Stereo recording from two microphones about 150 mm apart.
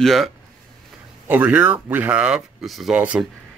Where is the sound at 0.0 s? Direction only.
Centre (ahead or behind).